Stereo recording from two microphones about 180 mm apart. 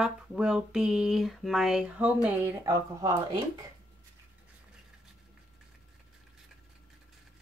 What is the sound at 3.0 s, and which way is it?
Speech, 20° right (ahead or behind).